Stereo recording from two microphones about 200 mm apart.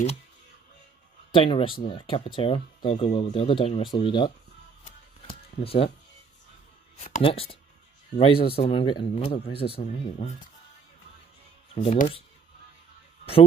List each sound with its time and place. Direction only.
1.3 s speech: 25° left (ahead or behind)
5.2 s music: 30° left (ahead or behind)
7.0 s speech: 35° left (ahead or behind)
11.7 s speech: 35° left (ahead or behind)
13.2 s speech: 30° left (ahead or behind)